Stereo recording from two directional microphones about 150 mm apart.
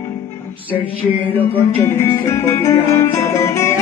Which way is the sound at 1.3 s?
10° left (ahead or behind).